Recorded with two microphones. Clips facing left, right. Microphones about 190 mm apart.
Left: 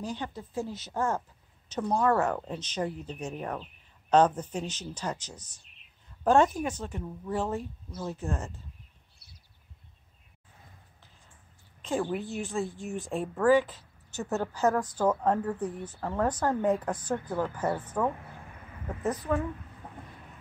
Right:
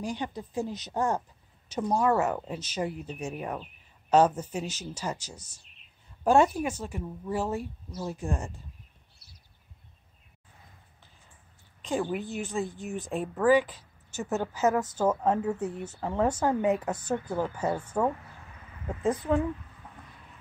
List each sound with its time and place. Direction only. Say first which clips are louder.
0.0 s a woman's voice: right 2 dB; 15° right (ahead or behind)
11.8 s a woman's voice: even; centre (ahead or behind)
15.7 s speech: right 2 dB; 25° right (ahead or behind)
16.0 s a woman's voice: right 2 dB; 15° right (ahead or behind)